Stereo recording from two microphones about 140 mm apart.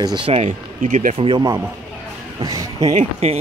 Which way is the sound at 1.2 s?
40° right (ahead or behind).